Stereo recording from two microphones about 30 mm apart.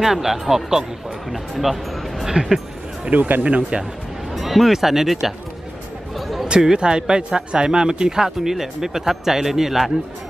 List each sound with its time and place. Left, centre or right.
0.0 s speech: centre
2.2 s speech: centre
3.1 s speech: right
3.4 s speech: right
4.3 s music: centre
4.7 s speech: centre
6.1 s music: centre
6.6 s speech: right
8.2 s speech: centre